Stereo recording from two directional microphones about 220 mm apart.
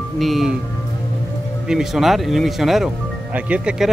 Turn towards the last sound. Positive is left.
turn(degrees=-5)  # may be behind; listen again after turning